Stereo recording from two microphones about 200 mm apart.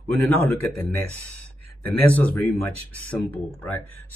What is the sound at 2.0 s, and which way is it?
Speech, 10° left (ahead or behind).